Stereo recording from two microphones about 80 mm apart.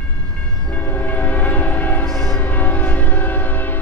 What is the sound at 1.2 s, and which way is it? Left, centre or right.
Train, left.